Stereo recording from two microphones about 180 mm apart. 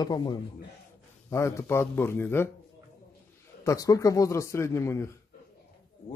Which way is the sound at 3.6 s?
20° left (ahead or behind).